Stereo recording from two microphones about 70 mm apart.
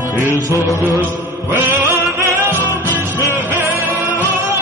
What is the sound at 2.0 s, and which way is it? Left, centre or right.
Music, right.